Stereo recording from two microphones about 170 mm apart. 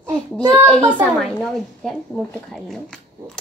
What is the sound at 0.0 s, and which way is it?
Child singing, 15° right (ahead or behind).